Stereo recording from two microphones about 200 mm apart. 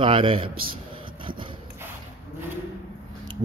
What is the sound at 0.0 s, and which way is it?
Speech, 25° right (ahead or behind).